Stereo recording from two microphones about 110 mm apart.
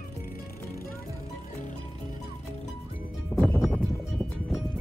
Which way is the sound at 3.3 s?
10° right (ahead or behind).